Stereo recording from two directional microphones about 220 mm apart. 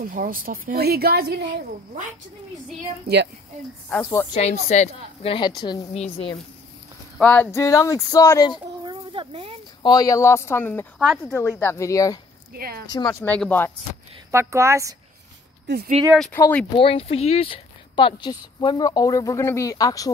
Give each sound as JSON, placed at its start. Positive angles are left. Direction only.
{"t": 0.0, "sound": "a woman's voice", "side_deg": -40}
{"t": 3.1, "sound": "a woman's voice", "side_deg": -45}
{"t": 3.9, "sound": "speech", "side_deg": 10}
{"t": 4.4, "sound": "speech", "side_deg": 30}
{"t": 7.2, "sound": "speech", "side_deg": 10}
{"t": 8.8, "sound": "a sound", "side_deg": -20}
{"t": 9.8, "sound": "speech", "side_deg": 15}
{"t": 11.0, "sound": "speech", "side_deg": 0}
{"t": 11.6, "sound": "speech", "side_deg": 15}
{"t": 12.5, "sound": "a woman's voice", "side_deg": -40}
{"t": 12.9, "sound": "speech", "side_deg": 15}
{"t": 14.3, "sound": "a woman's voice", "side_deg": -10}
{"t": 15.6, "sound": "speech", "side_deg": -45}
{"t": 16.7, "sound": "speech", "side_deg": 25}